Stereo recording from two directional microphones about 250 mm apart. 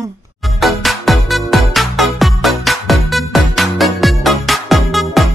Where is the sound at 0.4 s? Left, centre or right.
Centre.